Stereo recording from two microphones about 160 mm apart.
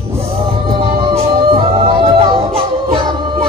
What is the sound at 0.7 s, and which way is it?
Music, 35° right (ahead or behind).